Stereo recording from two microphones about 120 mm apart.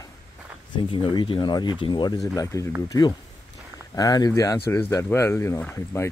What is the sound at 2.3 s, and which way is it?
Speech, 25° left (ahead or behind).